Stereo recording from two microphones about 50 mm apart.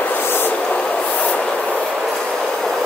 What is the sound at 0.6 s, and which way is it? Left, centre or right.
Train, centre.